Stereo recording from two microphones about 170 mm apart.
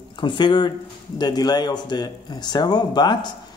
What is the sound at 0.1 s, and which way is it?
A man's voice, 30° left (ahead or behind).